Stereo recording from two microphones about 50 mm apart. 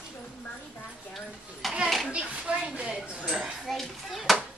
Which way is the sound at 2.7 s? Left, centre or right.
Right.